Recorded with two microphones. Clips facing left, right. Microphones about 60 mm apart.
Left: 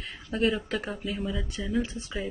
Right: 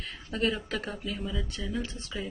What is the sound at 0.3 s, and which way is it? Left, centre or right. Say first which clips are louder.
Speech: left 3 dB; centre.